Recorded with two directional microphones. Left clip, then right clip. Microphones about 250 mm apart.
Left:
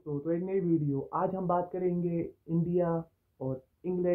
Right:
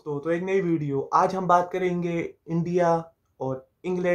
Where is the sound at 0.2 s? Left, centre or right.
Centre.